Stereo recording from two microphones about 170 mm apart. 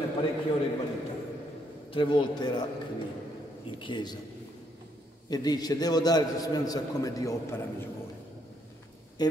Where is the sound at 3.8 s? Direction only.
25° left (ahead or behind).